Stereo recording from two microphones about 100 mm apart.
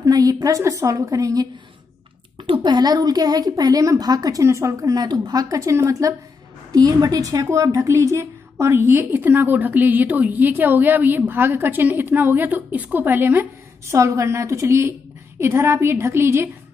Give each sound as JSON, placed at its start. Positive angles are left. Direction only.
{"t": 0.0, "sound": "a woman's voice", "side_deg": -40}
{"t": 2.3, "sound": "a woman's voice", "side_deg": -60}